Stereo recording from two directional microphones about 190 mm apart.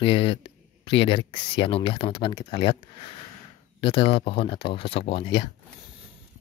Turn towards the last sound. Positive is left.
turn(degrees=30)  # may be behind; listen again after turning